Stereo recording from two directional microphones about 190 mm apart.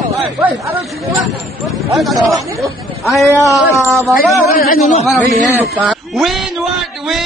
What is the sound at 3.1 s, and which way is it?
Speech, 15° left (ahead or behind).